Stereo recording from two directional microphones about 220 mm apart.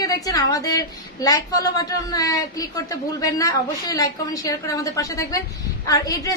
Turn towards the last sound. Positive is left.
turn(degrees=15)  # may be behind; listen again after turning